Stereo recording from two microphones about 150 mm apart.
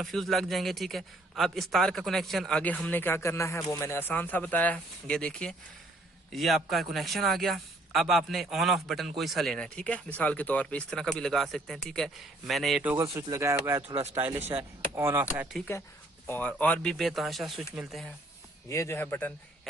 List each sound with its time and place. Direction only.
0.0 s a man's voice: centre (ahead or behind)
12.8 s speech: 20° right (ahead or behind)
15.0 s speech: 15° right (ahead or behind)
16.3 s a man's voice: 10° left (ahead or behind)
18.7 s speech: 20° left (ahead or behind)